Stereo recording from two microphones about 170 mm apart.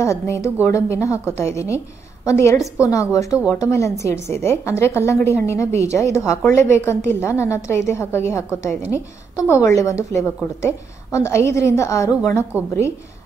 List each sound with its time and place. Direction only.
0.0 s a woman's voice: 15° left (ahead or behind)